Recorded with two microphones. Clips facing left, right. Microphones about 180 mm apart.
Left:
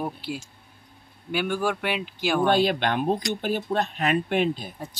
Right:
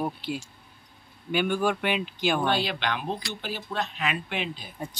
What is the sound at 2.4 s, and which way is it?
Speech, 50° left (ahead or behind).